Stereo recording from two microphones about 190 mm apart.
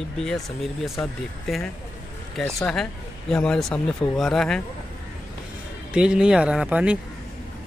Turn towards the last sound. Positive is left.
turn(degrees=-5)  # may be behind; listen again after turning